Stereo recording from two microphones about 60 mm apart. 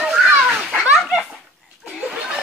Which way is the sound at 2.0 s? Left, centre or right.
Centre.